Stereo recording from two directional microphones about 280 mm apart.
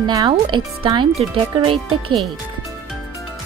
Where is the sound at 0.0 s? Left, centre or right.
Centre.